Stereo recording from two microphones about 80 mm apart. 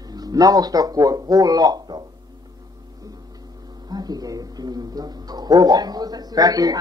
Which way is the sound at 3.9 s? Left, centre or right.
Right.